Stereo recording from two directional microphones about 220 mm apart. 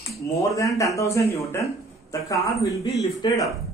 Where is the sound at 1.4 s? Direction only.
15° left (ahead or behind).